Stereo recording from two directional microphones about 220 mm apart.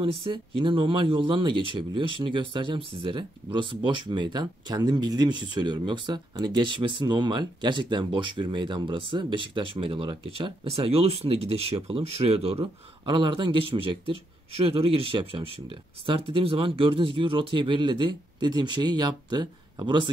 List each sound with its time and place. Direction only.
0.0 s speech: 25° right (ahead or behind)